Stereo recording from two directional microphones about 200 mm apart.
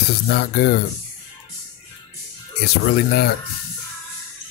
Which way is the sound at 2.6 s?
55° left (ahead or behind).